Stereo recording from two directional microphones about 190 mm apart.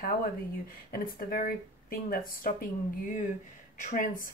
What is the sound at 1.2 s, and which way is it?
Speech, 50° left (ahead or behind).